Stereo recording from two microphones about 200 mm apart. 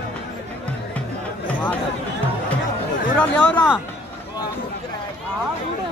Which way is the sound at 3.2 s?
10° left (ahead or behind).